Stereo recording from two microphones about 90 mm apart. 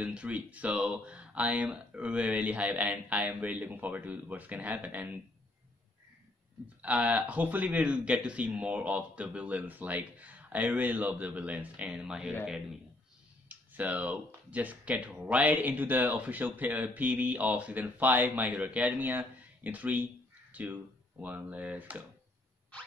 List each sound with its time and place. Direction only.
0.0 s speech: 15° right (ahead or behind)
6.8 s speech: 15° right (ahead or behind)
13.5 s speech: 15° right (ahead or behind)